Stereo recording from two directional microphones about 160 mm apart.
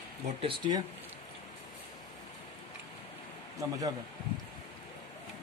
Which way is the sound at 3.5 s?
20° right (ahead or behind).